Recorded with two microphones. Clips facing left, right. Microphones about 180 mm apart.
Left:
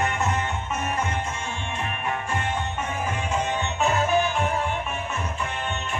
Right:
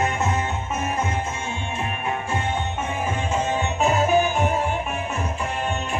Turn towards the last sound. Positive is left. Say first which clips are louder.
# right 3 dB
turn(degrees=-15)  # may be behind; listen again after turning